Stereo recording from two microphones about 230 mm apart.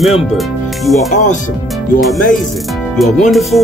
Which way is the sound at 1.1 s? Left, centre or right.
Left.